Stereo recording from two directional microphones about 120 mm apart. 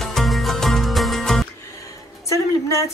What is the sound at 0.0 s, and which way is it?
Music, centre (ahead or behind).